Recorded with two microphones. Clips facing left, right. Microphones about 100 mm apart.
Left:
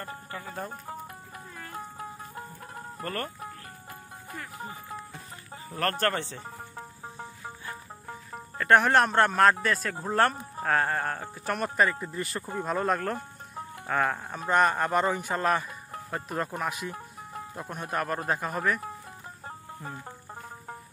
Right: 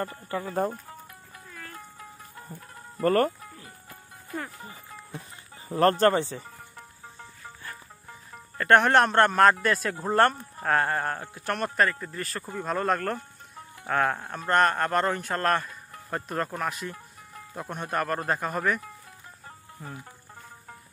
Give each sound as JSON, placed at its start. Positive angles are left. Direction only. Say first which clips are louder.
{"t": 0.3, "sound": "speech", "louder": "right 10 dB", "side_deg": -40}
{"t": 1.7, "sound": "music", "louder": "left 6 dB", "side_deg": 35}
{"t": 3.0, "sound": "speech", "louder": "right 12 dB", "side_deg": -40}
{"t": 5.7, "sound": "speech", "louder": "right 7 dB", "side_deg": -25}
{"t": 7.2, "sound": "music", "louder": "left 4 dB", "side_deg": 25}
{"t": 8.5, "sound": "speech", "louder": "right 2 dB", "side_deg": 0}
{"t": 11.9, "sound": "speech", "louder": "left 1 dB", "side_deg": 15}
{"t": 12.6, "sound": "speech", "louder": "right 1 dB", "side_deg": 5}